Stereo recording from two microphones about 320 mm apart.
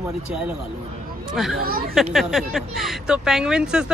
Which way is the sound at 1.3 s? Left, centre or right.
Centre.